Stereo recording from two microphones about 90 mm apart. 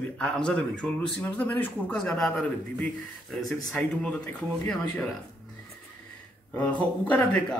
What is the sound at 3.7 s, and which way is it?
Speech, 15° left (ahead or behind).